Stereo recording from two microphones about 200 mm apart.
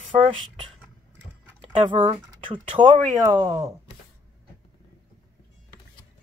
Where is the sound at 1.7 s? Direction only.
25° right (ahead or behind).